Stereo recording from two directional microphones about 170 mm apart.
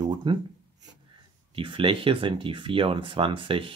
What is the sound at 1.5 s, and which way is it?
Speech, 30° right (ahead or behind).